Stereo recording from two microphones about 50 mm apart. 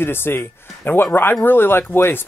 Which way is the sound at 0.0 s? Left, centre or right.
Left.